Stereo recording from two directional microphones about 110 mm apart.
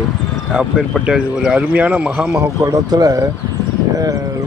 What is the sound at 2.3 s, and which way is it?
Speech, 35° right (ahead or behind).